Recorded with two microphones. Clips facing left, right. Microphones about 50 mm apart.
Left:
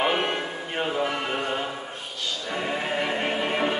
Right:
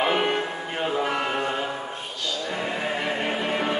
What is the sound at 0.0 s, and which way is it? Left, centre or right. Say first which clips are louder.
Music: right 2 dB; centre.